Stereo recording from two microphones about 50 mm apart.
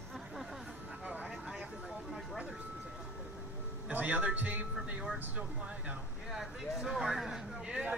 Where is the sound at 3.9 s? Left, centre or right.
Right.